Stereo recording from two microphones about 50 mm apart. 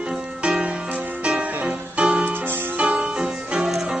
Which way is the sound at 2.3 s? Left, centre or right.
Right.